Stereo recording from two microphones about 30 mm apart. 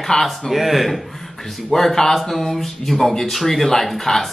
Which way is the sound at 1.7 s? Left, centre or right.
Centre.